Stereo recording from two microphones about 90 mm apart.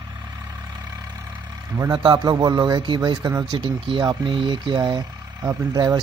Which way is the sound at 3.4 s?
65° right (ahead or behind).